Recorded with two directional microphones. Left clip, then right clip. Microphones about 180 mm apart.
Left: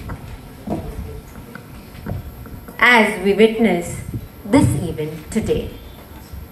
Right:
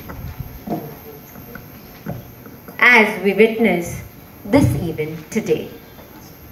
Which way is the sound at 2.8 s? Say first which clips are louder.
Right 1 dB; 30° right (ahead or behind).